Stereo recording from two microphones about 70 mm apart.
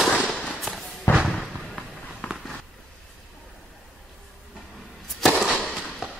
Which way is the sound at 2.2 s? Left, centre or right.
Centre.